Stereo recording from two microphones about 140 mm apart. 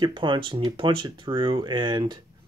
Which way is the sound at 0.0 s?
35° right (ahead or behind).